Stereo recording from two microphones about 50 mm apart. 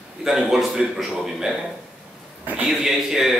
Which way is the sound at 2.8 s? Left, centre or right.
Centre.